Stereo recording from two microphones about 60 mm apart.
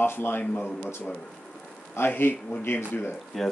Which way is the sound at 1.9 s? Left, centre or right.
Left.